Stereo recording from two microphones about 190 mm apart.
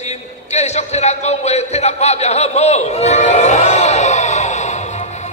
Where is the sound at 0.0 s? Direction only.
35° left (ahead or behind).